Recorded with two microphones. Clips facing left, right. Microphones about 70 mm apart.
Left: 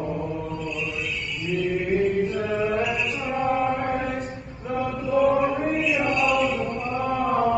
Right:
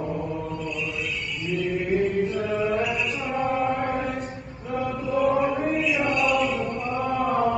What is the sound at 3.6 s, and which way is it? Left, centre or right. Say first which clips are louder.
Mantra: left 1 dB; left.